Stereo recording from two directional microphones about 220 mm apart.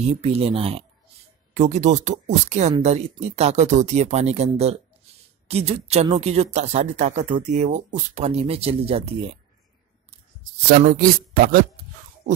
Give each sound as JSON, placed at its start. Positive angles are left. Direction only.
{"t": 0.0, "sound": "speech", "side_deg": -30}
{"t": 10.8, "sound": "speech", "side_deg": -35}